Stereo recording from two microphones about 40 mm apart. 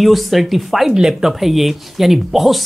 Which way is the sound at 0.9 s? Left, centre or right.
Centre.